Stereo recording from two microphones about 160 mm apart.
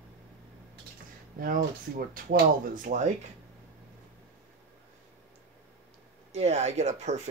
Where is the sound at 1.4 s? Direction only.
65° right (ahead or behind).